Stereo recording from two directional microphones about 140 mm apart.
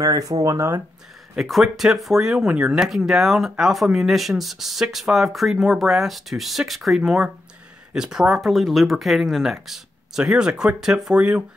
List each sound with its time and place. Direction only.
0.0 s speech: 25° right (ahead or behind)
1.3 s speech: centre (ahead or behind)